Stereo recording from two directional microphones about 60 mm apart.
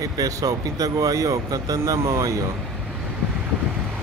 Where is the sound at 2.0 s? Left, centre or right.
Right.